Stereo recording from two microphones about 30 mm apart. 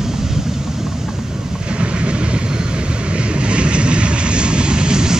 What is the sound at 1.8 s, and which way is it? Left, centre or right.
Vehicle, right.